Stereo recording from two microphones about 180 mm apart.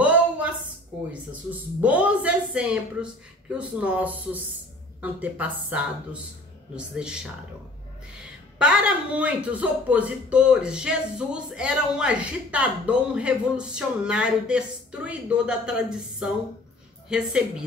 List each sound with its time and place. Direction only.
0.0 s a sound: 10° right (ahead or behind)
1.3 s speech: 10° right (ahead or behind)
8.5 s speech: 5° right (ahead or behind)